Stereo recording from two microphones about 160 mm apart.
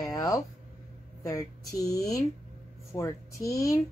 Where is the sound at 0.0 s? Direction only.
20° left (ahead or behind).